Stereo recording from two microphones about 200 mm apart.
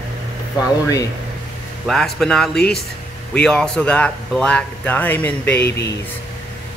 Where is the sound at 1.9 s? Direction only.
Centre (ahead or behind).